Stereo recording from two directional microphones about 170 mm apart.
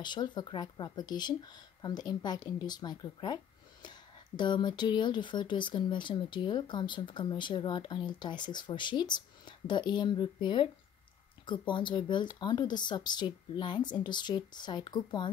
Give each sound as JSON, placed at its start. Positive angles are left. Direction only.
{"t": 0.0, "sound": "speech", "side_deg": 25}
{"t": 4.4, "sound": "speech", "side_deg": 25}